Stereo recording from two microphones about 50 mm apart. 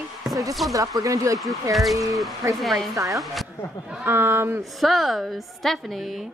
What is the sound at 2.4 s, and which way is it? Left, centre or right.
Speech, right.